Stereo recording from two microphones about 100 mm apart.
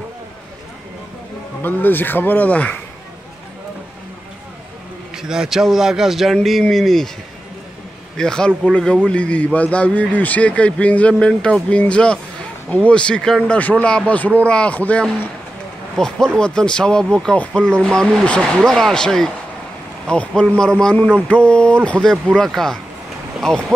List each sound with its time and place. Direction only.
1.6 s speech: 20° left (ahead or behind)
5.1 s speech: 5° right (ahead or behind)
8.2 s a man's voice: 10° left (ahead or behind)